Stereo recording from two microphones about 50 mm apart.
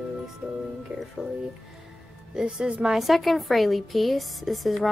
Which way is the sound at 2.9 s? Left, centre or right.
Centre.